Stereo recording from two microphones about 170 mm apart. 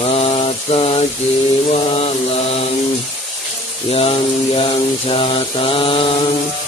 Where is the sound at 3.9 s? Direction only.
35° left (ahead or behind).